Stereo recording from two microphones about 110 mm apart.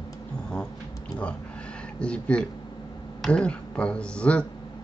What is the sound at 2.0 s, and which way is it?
Speech, 10° left (ahead or behind).